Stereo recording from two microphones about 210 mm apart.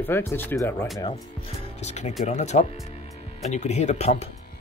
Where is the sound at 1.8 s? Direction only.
30° left (ahead or behind).